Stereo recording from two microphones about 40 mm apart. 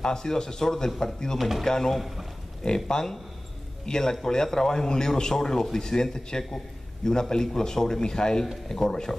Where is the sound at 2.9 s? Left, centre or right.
Centre.